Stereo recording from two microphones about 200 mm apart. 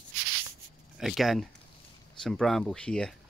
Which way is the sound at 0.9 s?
Centre (ahead or behind).